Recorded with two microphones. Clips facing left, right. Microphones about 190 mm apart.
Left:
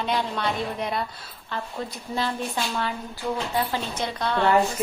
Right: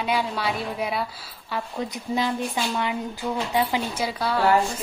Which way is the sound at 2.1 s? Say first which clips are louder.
Right 2 dB; 15° right (ahead or behind).